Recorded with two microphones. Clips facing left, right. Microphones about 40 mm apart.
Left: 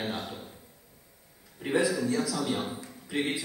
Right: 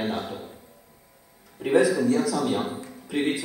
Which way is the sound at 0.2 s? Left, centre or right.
Centre.